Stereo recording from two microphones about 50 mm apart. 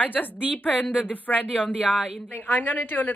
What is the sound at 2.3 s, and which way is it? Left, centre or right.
Speech, left.